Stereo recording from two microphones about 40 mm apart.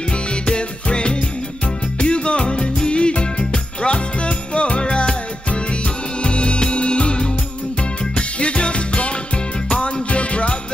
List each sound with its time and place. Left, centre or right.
0.1 s music: left